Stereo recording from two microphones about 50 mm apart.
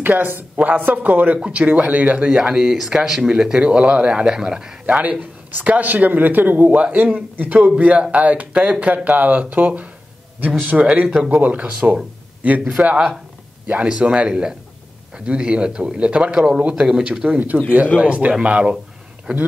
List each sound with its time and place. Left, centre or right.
0.0 s speech: right; by 4.7 s centre
4.8 s speech: right
6.8 s speech: right
12.8 s speech: centre